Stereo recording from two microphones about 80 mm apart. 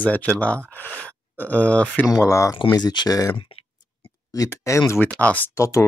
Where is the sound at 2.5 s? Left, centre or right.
Left.